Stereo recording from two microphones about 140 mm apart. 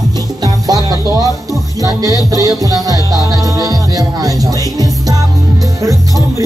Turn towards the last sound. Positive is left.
turn(degrees=-25)  # may be behind; listen again after turning